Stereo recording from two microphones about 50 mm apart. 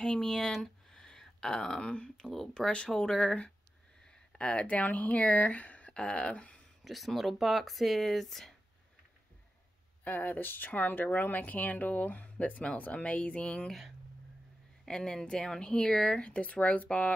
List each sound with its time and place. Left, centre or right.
0.0 s speech: centre
2.1 s speech: centre
6.8 s speech: centre
10.0 s speech: left
13.7 s speech: centre
14.9 s speech: centre
16.3 s speech: left